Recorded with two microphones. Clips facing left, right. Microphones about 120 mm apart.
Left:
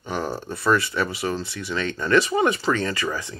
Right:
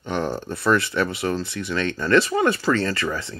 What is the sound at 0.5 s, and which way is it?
Speech, 5° left (ahead or behind).